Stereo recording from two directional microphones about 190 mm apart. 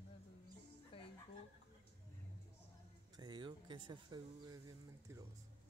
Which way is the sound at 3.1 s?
20° right (ahead or behind).